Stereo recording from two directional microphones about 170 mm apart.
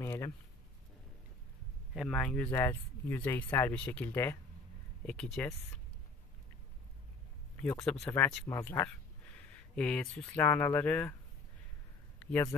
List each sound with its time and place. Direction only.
0.0 s a sound: 15° left (ahead or behind)
2.0 s speech: 5° left (ahead or behind)
7.5 s speech: 10° left (ahead or behind)
8.0 s speech: 15° left (ahead or behind)
12.3 s speech: 10° left (ahead or behind)